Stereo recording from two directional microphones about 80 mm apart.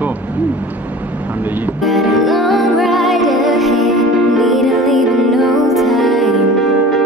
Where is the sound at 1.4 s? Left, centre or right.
Right.